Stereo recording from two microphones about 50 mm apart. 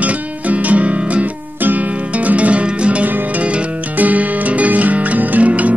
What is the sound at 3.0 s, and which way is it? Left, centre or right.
Music, right.